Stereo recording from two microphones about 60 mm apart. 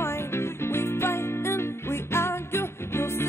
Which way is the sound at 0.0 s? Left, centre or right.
Left.